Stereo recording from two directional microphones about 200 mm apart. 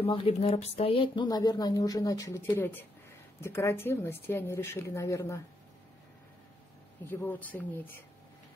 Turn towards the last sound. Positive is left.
turn(degrees=10)  # may be behind; listen again after turning